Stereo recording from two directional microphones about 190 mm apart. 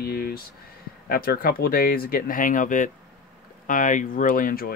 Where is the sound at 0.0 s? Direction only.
50° left (ahead or behind).